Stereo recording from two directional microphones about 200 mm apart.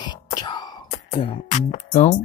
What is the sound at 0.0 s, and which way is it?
Wail, 20° left (ahead or behind).